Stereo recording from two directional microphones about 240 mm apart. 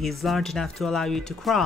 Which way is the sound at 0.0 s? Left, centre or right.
Centre.